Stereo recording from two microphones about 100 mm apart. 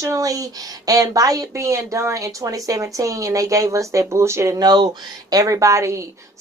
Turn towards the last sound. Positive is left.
turn(degrees=-30)  # may be behind; listen again after turning